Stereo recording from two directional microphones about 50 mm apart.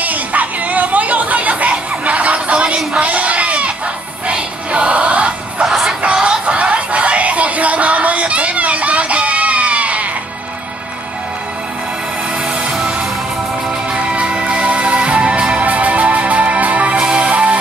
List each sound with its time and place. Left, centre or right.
0.0 s music: right
5.7 s music: centre
6.0 s music: right
13.9 s music: centre